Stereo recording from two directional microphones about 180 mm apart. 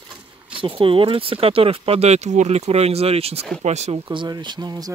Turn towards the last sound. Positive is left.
turn(degrees=-20)  # may be behind; listen again after turning